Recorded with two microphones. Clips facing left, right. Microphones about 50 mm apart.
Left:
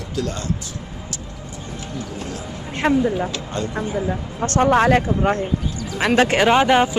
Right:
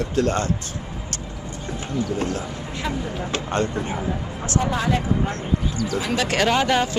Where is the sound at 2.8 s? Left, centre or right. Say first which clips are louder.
Left 11 dB; left.